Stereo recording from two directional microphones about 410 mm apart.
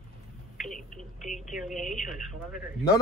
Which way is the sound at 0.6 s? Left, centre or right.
Centre.